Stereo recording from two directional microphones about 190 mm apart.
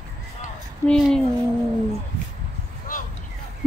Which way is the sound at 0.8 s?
5° left (ahead or behind).